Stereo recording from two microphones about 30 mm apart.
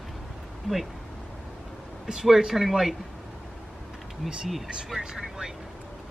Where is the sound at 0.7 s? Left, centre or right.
Centre.